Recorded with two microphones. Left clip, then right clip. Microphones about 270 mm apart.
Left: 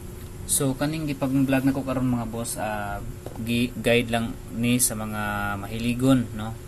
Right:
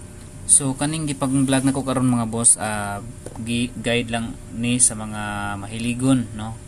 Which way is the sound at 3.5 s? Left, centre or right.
Centre.